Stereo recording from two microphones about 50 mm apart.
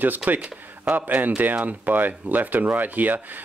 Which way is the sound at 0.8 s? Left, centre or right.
Right.